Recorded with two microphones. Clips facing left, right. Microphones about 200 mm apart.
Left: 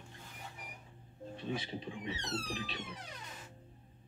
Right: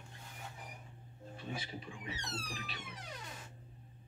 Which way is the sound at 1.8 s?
25° left (ahead or behind).